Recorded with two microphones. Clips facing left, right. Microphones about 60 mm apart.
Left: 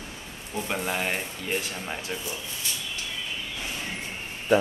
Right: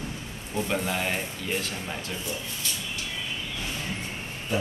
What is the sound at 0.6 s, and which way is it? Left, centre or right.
Speech, centre.